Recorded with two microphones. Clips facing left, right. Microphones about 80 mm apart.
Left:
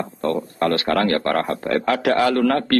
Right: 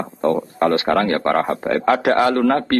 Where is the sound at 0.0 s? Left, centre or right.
Centre.